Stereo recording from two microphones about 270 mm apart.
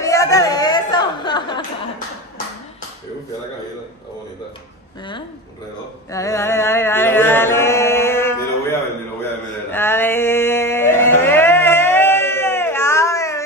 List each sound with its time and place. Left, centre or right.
0.0 s chatter: centre
6.1 s chant: centre
9.7 s music: centre